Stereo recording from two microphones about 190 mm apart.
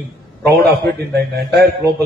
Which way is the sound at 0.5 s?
60° right (ahead or behind).